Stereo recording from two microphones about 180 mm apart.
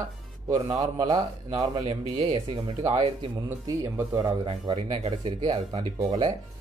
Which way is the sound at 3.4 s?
15° right (ahead or behind).